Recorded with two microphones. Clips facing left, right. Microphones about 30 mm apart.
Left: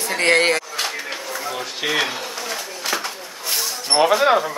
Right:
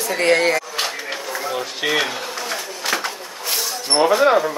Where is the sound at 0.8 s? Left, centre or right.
Centre.